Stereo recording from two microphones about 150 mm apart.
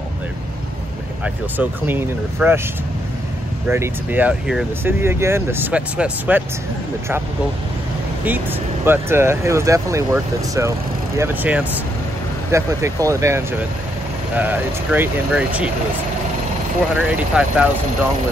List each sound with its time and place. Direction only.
1.2 s speech: 10° right (ahead or behind)
3.6 s speech: 15° right (ahead or behind)
4.8 s speech: 15° right (ahead or behind)
8.3 s speech: 15° right (ahead or behind)
11.1 s speech: 10° right (ahead or behind)
12.4 s speech: 20° right (ahead or behind)
16.9 s speech: 5° right (ahead or behind)